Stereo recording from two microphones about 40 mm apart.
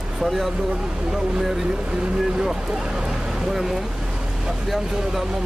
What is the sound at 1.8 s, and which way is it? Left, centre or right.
Speech, centre.